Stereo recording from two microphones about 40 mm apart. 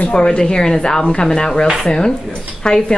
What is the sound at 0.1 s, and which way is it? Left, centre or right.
A man's voice, left.